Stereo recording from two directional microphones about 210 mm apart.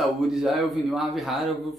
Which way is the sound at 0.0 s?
Centre (ahead or behind).